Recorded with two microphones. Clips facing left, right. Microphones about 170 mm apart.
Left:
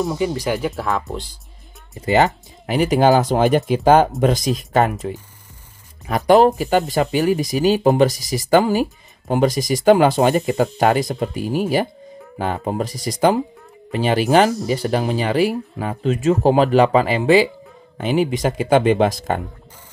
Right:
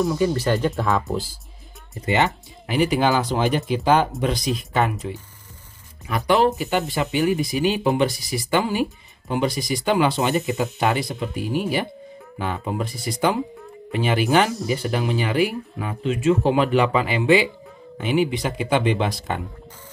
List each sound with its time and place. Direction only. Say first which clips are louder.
0.1 s speech: even; 15° left (ahead or behind); by 1.3 s centre (ahead or behind)
2.0 s speech: left 5 dB; 40° left (ahead or behind)
6.0 s speech: left 6 dB; 40° left (ahead or behind)